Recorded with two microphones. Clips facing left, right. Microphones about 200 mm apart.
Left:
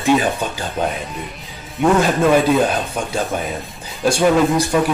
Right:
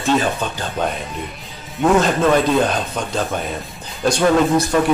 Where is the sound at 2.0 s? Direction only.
10° left (ahead or behind).